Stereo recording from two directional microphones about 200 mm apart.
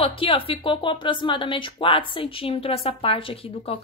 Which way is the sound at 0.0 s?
25° left (ahead or behind).